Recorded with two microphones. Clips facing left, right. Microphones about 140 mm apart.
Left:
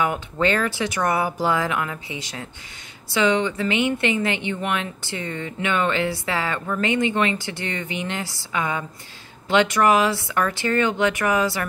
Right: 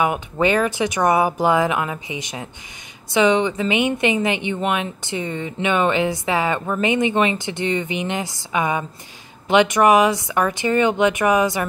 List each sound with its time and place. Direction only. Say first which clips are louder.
0.0 s a woman's voice: right 3 dB; 15° right (ahead or behind)